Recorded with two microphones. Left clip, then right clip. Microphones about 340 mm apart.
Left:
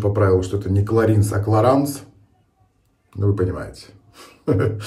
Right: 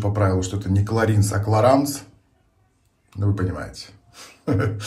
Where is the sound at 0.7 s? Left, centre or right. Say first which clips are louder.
Left 4 dB; centre.